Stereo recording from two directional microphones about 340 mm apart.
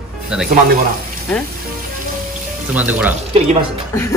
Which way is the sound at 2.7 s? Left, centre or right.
Centre.